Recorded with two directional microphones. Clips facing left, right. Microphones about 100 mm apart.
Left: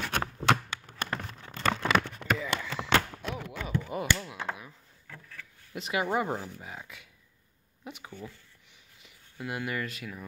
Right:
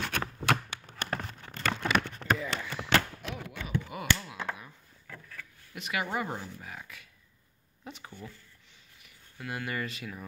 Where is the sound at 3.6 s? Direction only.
30° left (ahead or behind).